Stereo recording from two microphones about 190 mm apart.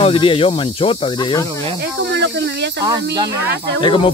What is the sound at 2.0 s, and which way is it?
Speech, 65° right (ahead or behind).